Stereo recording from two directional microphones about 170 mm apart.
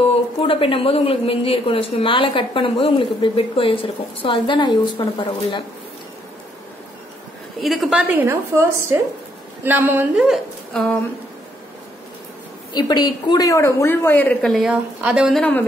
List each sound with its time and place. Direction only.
0.4 s a woman's voice: 30° left (ahead or behind)
7.6 s a woman's voice: centre (ahead or behind)
8.1 s a woman's voice: 15° right (ahead or behind); by 11.0 s 5° left (ahead or behind)
12.7 s a woman's voice: 25° left (ahead or behind); by 15.6 s 5° left (ahead or behind)